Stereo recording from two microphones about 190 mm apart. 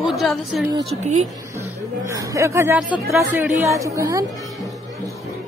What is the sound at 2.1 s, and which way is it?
A woman's voice, 15° right (ahead or behind).